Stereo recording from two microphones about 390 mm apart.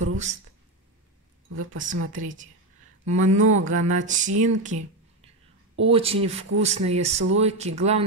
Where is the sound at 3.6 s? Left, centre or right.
Centre.